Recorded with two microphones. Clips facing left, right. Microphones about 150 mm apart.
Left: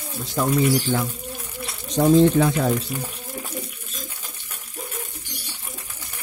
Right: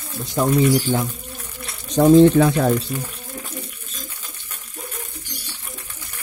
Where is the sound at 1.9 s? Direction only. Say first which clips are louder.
Right 4 dB; 60° right (ahead or behind).